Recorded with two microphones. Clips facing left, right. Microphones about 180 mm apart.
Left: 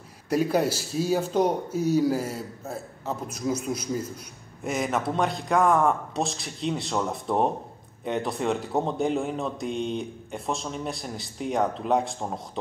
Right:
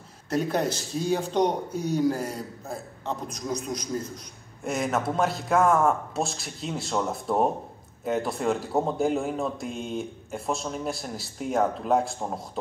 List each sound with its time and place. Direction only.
0.3 s speech: 10° left (ahead or behind)